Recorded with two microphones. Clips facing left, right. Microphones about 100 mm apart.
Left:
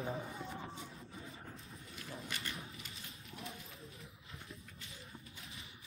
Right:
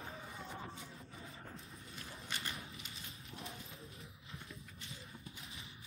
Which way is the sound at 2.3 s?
25° right (ahead or behind).